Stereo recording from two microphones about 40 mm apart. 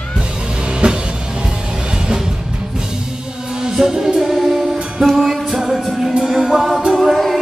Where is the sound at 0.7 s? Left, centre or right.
Right.